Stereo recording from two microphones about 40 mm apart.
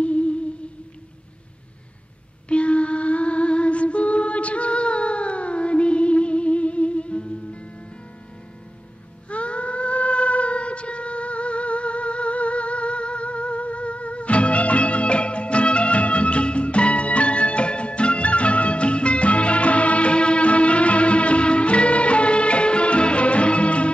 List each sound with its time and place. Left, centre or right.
0.0 s music: left
2.4 s music: left
9.3 s a sound: left